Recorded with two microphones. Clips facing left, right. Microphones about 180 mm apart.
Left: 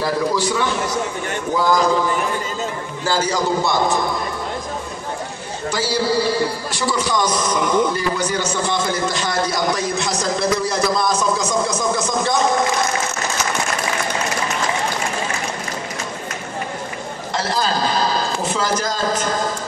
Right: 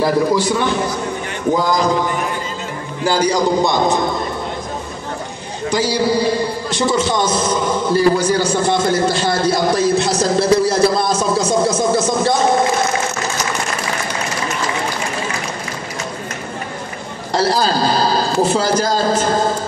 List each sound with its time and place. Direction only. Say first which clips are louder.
0.0 s a man's voice: right 4 dB; 15° right (ahead or behind)
3.0 s a man's voice: right 5 dB; 15° right (ahead or behind)
5.7 s speech: right 4 dB; 15° right (ahead or behind)
17.3 s speech: right 6 dB; 35° right (ahead or behind)